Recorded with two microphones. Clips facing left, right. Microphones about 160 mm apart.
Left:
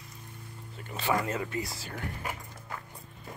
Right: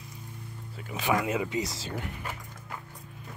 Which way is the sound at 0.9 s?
10° right (ahead or behind).